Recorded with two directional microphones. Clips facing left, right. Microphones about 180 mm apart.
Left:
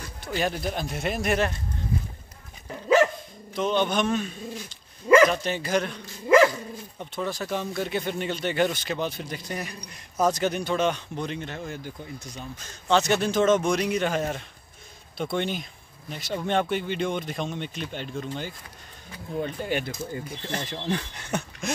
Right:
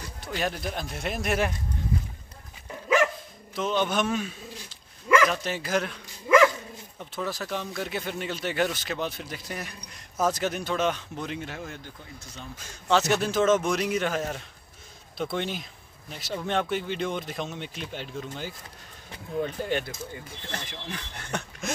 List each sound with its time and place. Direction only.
0.3 s speech: centre (ahead or behind)
3.5 s speech: centre (ahead or behind)
5.0 s dog: 35° left (ahead or behind)
5.3 s speech: centre (ahead or behind)
6.2 s dog: 30° left (ahead or behind)
7.2 s speech: centre (ahead or behind)
11.8 s speech: 10° left (ahead or behind)
12.5 s speech: 5° right (ahead or behind)
19.6 s speech: centre (ahead or behind)
20.6 s speech: 35° left (ahead or behind)
21.3 s a sound: centre (ahead or behind)